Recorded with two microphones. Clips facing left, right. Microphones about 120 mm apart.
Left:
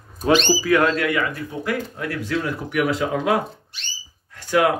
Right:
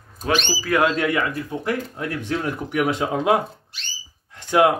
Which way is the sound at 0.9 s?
25° right (ahead or behind).